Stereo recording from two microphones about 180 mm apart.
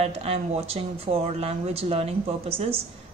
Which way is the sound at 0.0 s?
35° right (ahead or behind).